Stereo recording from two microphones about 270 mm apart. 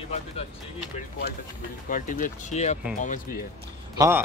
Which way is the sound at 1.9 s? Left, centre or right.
Left.